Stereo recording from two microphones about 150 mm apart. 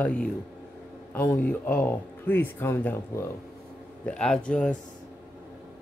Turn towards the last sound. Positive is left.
turn(degrees=5)  # may be behind; listen again after turning